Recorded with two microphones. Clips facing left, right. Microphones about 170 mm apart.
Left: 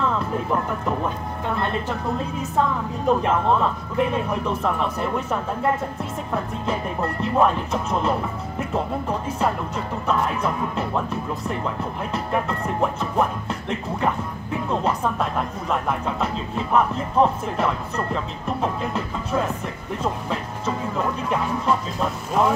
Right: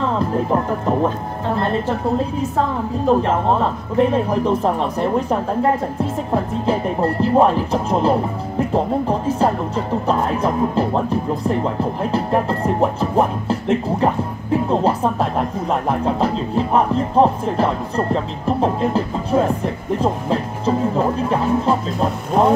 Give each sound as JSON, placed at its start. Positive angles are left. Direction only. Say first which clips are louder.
{"t": 0.0, "sound": "speech", "louder": "right 5 dB", "side_deg": -35}